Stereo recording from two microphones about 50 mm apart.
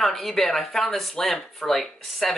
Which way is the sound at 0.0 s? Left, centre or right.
Centre.